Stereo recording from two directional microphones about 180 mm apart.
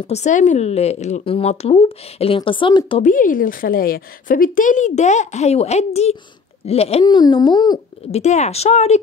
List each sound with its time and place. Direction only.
0.1 s speech: 40° left (ahead or behind)
3.0 s a woman's voice: 45° left (ahead or behind)
7.1 s speech: 25° left (ahead or behind)
8.1 s speech: 40° left (ahead or behind)